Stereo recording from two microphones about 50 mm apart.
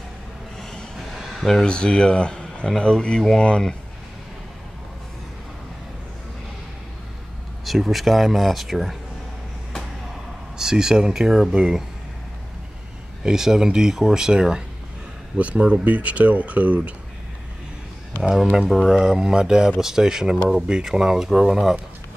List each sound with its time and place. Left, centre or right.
0.6 s a sound: centre
1.7 s speech: centre
7.6 s speech: centre
10.6 s speech: centre
13.2 s speech: centre
15.3 s speech: right
18.3 s speech: centre